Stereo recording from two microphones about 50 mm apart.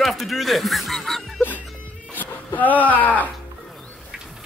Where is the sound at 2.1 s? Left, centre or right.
Left.